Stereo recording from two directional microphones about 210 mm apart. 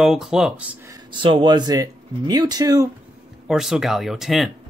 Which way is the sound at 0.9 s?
25° right (ahead or behind).